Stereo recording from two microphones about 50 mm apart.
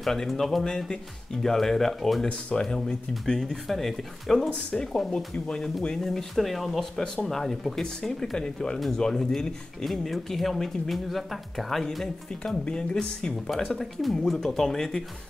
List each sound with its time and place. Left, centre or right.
0.0 s speech: centre
2.2 s speech: centre
4.4 s speech: left